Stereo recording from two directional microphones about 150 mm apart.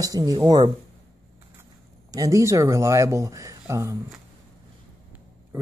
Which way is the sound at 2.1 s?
20° right (ahead or behind).